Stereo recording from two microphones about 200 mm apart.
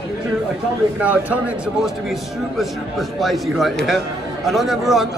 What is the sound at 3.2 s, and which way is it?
A man's voice, centre (ahead or behind).